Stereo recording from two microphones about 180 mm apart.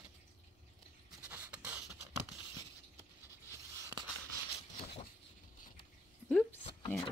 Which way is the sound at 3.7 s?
20° right (ahead or behind).